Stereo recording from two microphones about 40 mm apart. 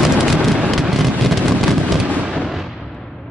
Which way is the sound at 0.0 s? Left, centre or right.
Centre.